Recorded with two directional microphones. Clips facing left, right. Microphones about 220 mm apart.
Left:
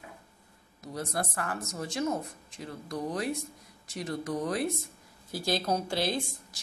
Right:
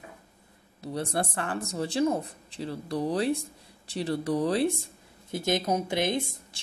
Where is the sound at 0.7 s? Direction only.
30° right (ahead or behind).